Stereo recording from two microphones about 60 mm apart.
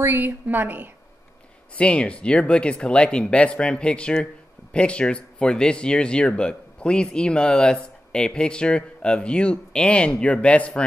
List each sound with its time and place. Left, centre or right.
0.0 s a woman's voice: right
1.8 s speech: centre